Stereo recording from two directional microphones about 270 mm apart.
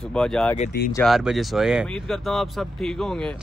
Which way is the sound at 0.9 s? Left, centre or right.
Centre.